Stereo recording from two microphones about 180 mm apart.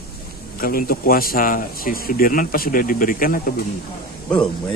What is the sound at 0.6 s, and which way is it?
Speech, 50° left (ahead or behind).